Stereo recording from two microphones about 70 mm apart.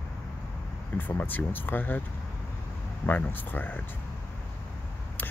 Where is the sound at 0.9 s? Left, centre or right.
Left.